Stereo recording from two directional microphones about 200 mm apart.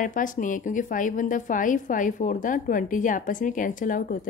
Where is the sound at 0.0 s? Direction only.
40° left (ahead or behind).